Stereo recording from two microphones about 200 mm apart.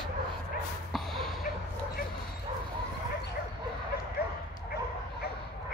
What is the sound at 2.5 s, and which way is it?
Bow-wow, 30° right (ahead or behind).